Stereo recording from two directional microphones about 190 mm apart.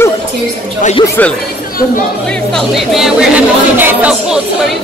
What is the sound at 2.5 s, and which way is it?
Speech, centre (ahead or behind).